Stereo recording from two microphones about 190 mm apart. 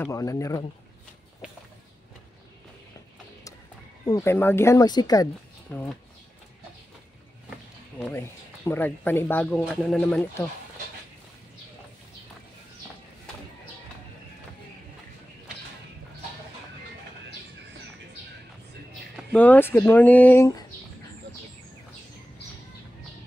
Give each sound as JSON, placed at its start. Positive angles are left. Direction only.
{"t": 0.0, "sound": "speech", "side_deg": 15}
{"t": 4.0, "sound": "speech", "side_deg": 15}
{"t": 8.1, "sound": "speech", "side_deg": 10}
{"t": 19.3, "sound": "speech", "side_deg": 10}